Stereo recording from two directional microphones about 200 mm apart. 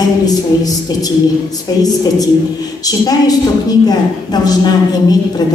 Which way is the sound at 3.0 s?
20° left (ahead or behind).